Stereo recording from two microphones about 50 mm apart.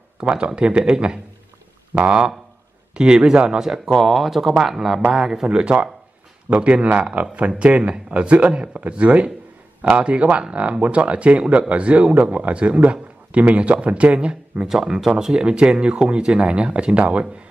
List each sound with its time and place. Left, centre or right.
0.2 s a man's voice: centre
14.7 s a man's voice: centre; by 17.3 s right